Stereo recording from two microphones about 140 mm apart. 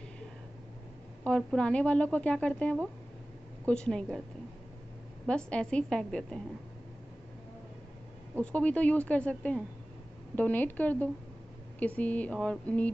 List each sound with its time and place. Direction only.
1.2 s a woman's voice: 5° left (ahead or behind)
5.2 s a woman's voice: 5° left (ahead or behind)
8.4 s a woman's voice: 10° left (ahead or behind)